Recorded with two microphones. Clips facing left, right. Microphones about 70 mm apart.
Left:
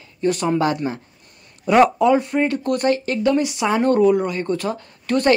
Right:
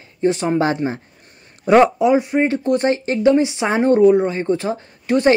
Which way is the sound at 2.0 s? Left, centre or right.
Centre.